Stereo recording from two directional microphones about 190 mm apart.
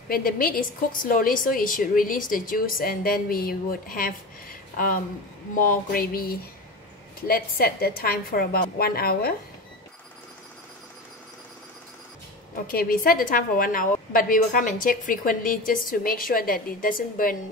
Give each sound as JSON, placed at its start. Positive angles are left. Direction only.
{"t": 0.1, "sound": "a woman's voice", "side_deg": 50}
{"t": 12.6, "sound": "a woman's voice", "side_deg": 50}